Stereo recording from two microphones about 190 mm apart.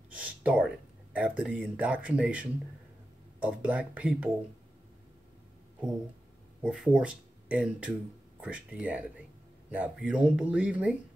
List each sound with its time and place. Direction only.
0.1 s a sound: 5° right (ahead or behind)
1.8 s speech: 5° right (ahead or behind)
6.6 s speech: 5° right (ahead or behind)